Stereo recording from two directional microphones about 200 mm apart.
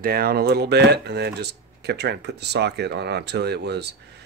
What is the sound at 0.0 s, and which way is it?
Speech, 50° right (ahead or behind).